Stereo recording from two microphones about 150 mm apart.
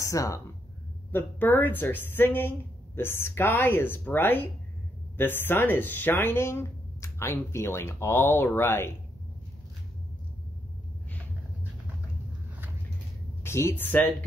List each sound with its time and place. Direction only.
0.0 s speech: 20° left (ahead or behind)
13.4 s speech: 15° left (ahead or behind)